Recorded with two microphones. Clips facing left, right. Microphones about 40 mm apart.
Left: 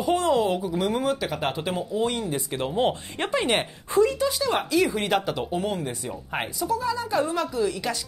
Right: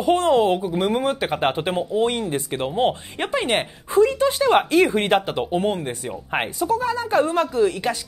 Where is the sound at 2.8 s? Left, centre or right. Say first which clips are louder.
Right 3 dB; right.